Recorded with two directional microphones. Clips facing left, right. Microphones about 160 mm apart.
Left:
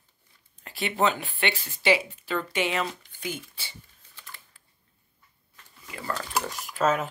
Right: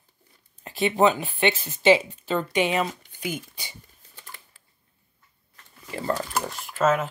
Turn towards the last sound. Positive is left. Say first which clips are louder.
# right 3 dB
turn(degrees=0)  # may be behind; listen again after turning